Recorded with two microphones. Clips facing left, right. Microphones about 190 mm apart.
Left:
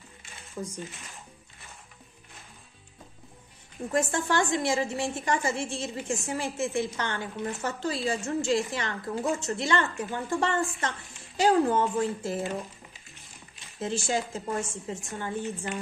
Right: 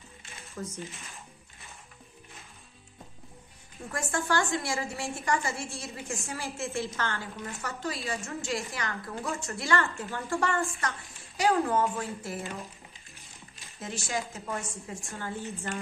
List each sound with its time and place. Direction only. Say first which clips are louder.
0.6 s a woman's voice: left 2 dB; 15° left (ahead or behind)
4.1 s a woman's voice: left 2 dB; 20° left (ahead or behind)
11.3 s a woman's voice: left 3 dB; 30° left (ahead or behind)
13.7 s a woman's voice: left 5 dB; 30° left (ahead or behind)